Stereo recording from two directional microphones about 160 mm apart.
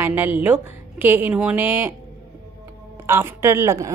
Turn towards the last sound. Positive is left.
turn(degrees=-20)  # may be behind; listen again after turning